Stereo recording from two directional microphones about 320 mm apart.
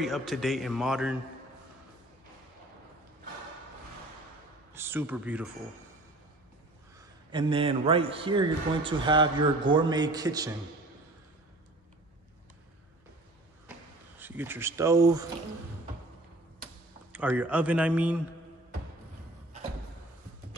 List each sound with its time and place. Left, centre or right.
0.0 s a man's voice: centre
4.7 s a man's voice: centre
7.0 s a man's voice: centre
14.1 s a man's voice: centre
17.1 s a man's voice: centre